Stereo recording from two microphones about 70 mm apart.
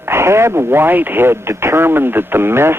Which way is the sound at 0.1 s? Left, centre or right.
Right.